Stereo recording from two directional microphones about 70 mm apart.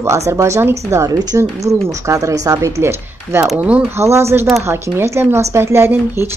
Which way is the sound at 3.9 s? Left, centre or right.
Right.